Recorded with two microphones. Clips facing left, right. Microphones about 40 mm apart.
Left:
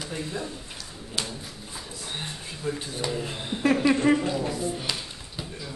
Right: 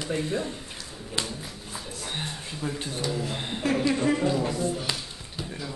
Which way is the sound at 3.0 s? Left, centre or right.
Left.